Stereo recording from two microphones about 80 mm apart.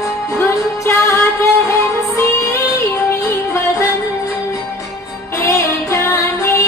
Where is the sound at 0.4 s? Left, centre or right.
Left.